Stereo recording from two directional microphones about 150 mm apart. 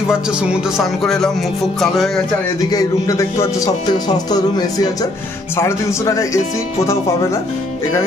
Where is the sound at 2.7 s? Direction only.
25° left (ahead or behind).